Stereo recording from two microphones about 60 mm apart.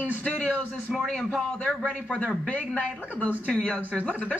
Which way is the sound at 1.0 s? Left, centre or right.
Centre.